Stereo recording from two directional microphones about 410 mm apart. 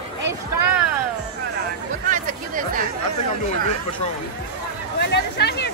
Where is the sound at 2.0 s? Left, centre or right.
Centre.